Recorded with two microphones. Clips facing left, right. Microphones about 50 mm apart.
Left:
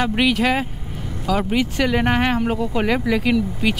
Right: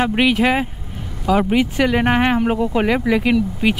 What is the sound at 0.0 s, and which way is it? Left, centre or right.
Speech, centre.